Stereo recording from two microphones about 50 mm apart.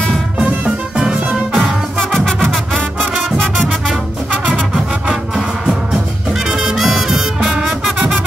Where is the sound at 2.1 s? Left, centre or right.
Centre.